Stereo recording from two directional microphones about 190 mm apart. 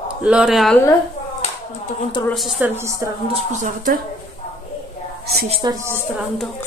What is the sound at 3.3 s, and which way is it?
Speech, 40° right (ahead or behind).